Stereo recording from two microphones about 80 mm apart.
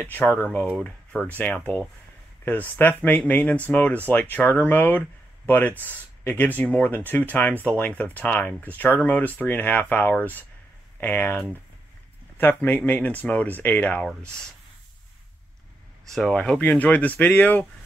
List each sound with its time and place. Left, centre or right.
0.3 s speech: left
2.8 s speech: left
12.4 s speech: left
16.1 s speech: centre